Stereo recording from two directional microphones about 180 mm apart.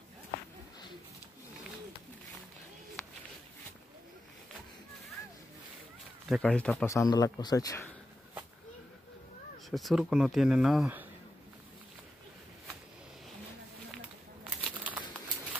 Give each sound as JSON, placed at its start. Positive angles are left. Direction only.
{"t": 6.2, "sound": "speech", "side_deg": 5}
{"t": 9.7, "sound": "speech", "side_deg": 0}
{"t": 14.4, "sound": "a sound", "side_deg": -5}